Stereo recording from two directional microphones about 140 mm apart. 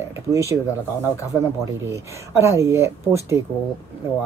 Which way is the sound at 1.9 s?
20° right (ahead or behind).